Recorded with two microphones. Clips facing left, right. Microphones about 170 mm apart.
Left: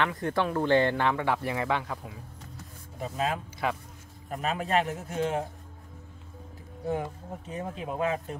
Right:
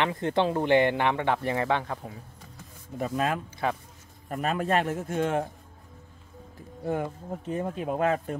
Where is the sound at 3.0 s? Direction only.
55° right (ahead or behind).